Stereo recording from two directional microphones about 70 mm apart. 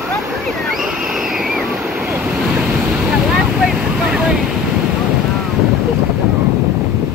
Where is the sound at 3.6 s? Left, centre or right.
Centre.